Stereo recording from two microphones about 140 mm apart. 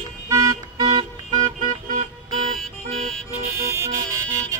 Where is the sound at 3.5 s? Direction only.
20° right (ahead or behind).